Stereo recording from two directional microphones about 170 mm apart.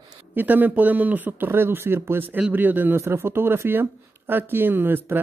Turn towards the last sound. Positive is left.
turn(degrees=-10)  # may be behind; listen again after turning